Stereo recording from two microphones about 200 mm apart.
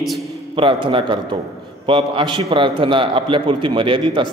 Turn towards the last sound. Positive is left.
turn(degrees=-25)  # may be behind; listen again after turning